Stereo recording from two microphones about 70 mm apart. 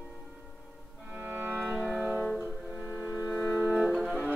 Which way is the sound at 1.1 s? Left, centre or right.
Right.